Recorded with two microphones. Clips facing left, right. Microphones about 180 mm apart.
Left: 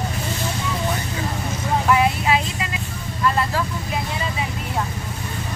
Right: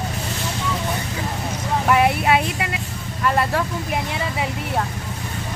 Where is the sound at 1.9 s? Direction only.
60° right (ahead or behind).